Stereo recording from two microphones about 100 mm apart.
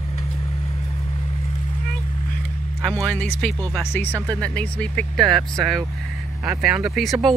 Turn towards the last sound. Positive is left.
turn(degrees=0)  # may be behind; listen again after turning